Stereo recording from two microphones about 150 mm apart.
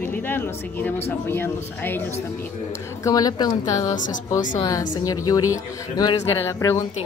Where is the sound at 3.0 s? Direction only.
25° left (ahead or behind).